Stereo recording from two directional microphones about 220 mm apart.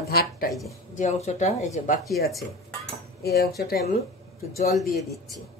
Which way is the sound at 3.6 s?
45° left (ahead or behind).